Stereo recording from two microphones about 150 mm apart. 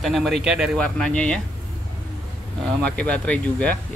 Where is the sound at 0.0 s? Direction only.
Centre (ahead or behind).